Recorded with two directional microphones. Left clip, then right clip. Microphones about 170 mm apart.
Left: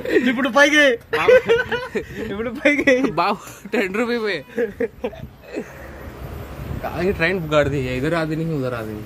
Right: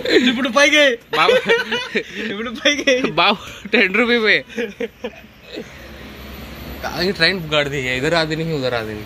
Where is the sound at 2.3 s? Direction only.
50° left (ahead or behind); by 3.2 s 75° left (ahead or behind).